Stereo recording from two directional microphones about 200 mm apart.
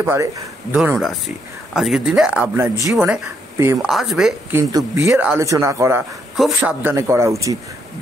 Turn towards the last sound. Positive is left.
turn(degrees=-15)  # may be behind; listen again after turning